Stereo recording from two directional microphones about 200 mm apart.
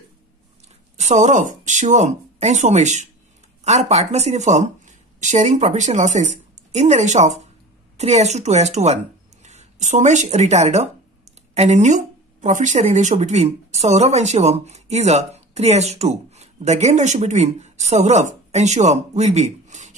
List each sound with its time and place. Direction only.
0.9 s speech: 35° right (ahead or behind)